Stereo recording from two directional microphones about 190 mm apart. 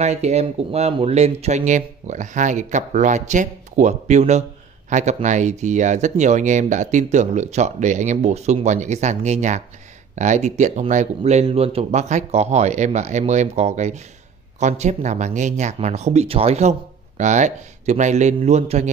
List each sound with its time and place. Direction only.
0.0 s speech: 35° right (ahead or behind)